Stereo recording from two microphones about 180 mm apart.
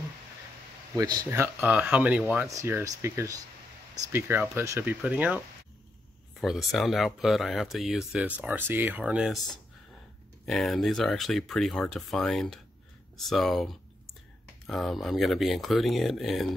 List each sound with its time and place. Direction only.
0.9 s speech: 20° right (ahead or behind); by 2.5 s 5° right (ahead or behind)
2.5 s speech: 15° right (ahead or behind)
6.4 s speech: centre (ahead or behind)
10.4 s speech: centre (ahead or behind)